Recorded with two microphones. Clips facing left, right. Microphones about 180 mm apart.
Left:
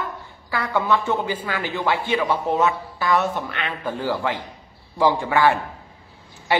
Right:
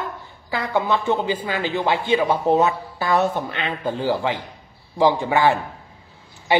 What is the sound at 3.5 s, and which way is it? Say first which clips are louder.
A woman's voice: right 3 dB; 25° right (ahead or behind).